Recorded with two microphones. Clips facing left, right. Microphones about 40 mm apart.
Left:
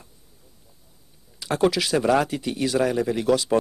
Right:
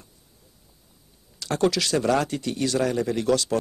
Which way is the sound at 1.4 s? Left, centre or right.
Centre.